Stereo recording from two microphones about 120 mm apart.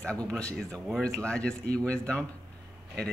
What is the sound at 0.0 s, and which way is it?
Speech, 10° left (ahead or behind).